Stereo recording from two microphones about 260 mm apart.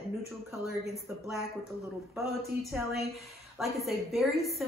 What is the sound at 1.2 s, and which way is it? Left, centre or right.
A woman's voice, centre.